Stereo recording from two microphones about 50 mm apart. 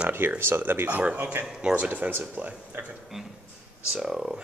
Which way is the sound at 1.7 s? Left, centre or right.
Right.